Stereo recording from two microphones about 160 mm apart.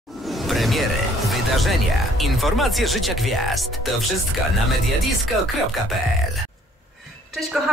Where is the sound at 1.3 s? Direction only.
Centre (ahead or behind).